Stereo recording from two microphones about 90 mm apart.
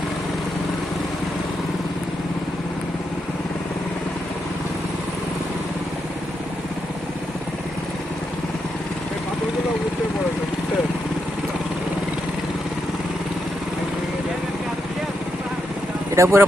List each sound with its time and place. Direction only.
16.2 s speech: 30° right (ahead or behind)